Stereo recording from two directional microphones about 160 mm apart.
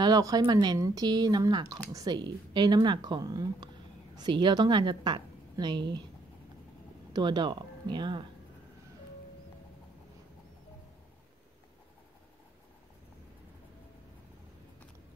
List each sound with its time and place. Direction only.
0.0 s speech: 25° right (ahead or behind)
7.1 s speech: 25° right (ahead or behind)